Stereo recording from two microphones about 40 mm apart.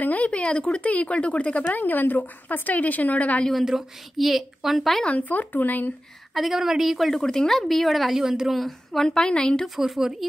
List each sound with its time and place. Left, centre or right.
0.0 s a sound: left
0.3 s speech: left
1.8 s a woman's voice: left
3.6 s a woman's voice: centre
5.1 s a woman's voice: left
6.3 s speech: centre
7.1 s speech: centre
8.2 s a woman's voice: centre
8.5 s speech: centre
9.1 s a woman's voice: left
9.8 s a woman's voice: centre